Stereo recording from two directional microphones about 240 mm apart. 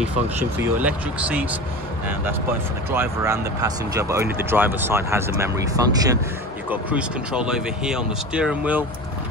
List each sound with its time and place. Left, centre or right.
0.7 s speech: centre
2.9 s speech: centre